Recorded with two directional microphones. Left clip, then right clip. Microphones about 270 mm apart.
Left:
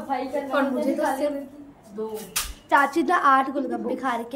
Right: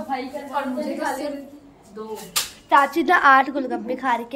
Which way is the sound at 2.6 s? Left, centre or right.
Centre.